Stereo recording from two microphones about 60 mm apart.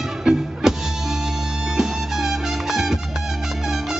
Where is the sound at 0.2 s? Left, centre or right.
Centre.